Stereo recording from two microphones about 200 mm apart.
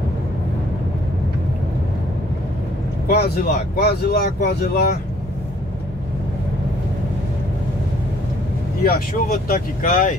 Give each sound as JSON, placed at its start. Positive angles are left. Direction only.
{"t": 3.1, "sound": "speech", "side_deg": 50}
{"t": 8.8, "sound": "speech", "side_deg": 50}